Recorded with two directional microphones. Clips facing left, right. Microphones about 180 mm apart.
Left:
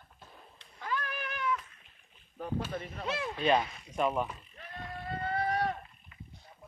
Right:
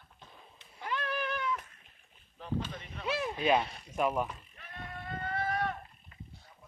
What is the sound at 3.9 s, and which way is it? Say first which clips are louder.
Speech: even; 5° right (ahead or behind).